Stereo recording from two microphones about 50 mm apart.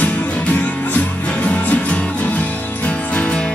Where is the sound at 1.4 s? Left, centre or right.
Left.